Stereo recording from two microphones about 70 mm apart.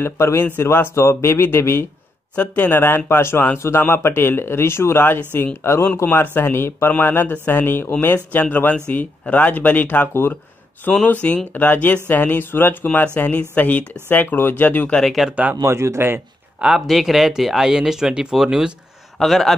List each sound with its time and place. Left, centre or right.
0.0 s speech: left
2.3 s speech: left
6.0 s speech: left
11.1 s speech: left
15.0 s speech: centre
15.6 s speech: right
16.8 s a man's voice: centre